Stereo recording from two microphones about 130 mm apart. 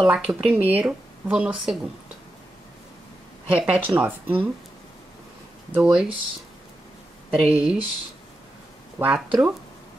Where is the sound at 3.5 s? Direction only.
10° right (ahead or behind).